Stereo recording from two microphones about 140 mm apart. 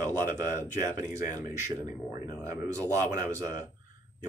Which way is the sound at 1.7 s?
25° right (ahead or behind).